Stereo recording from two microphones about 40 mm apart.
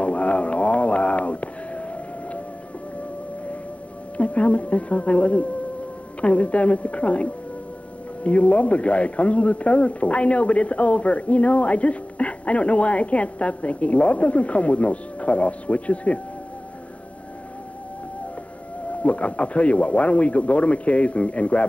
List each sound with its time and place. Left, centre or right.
0.0 s a sound: left
4.2 s speech: left
18.9 s speech: left